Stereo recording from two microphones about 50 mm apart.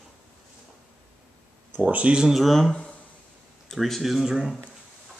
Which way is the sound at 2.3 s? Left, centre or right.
Centre.